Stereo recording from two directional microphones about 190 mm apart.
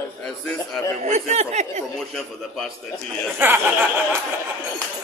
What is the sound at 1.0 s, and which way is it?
Speech, 35° right (ahead or behind).